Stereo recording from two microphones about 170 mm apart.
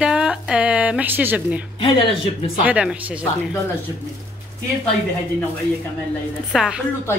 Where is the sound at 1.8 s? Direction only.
30° left (ahead or behind).